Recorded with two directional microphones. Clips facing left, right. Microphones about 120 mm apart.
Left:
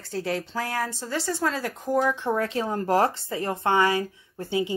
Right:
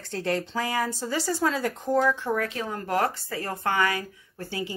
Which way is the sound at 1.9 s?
15° left (ahead or behind).